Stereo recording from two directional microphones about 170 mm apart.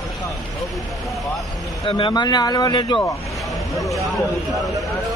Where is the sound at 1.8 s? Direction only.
30° left (ahead or behind).